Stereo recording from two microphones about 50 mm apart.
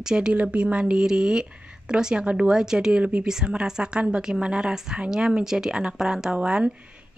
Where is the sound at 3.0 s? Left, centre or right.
Right.